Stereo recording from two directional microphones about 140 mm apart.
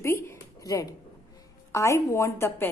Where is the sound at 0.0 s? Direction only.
20° left (ahead or behind).